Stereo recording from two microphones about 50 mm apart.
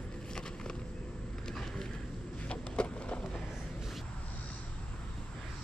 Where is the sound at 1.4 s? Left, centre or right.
Centre.